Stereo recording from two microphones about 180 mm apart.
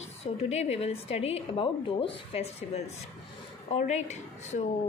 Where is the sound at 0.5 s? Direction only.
35° left (ahead or behind).